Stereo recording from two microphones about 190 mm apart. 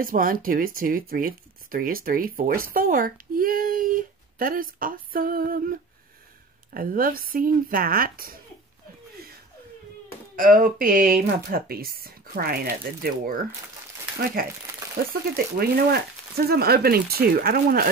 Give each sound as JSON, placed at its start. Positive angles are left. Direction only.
{"t": 0.0, "sound": "speech", "side_deg": -45}
{"t": 10.3, "sound": "speech", "side_deg": -45}
{"t": 15.3, "sound": "speech", "side_deg": -55}